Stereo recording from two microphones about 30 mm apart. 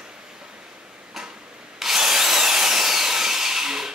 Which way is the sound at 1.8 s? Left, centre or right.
Centre.